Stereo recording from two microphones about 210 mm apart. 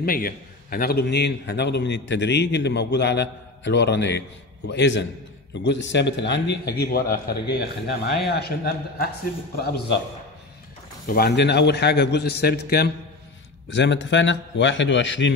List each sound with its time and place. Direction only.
0.0 s a man's voice: 45° left (ahead or behind)
11.1 s a man's voice: 50° left (ahead or behind)
13.7 s a man's voice: 60° left (ahead or behind)